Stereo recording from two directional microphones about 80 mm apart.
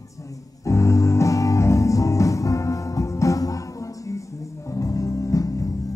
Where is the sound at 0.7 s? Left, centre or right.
Left.